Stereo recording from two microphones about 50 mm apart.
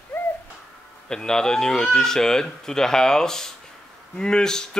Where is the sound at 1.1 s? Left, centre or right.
Centre.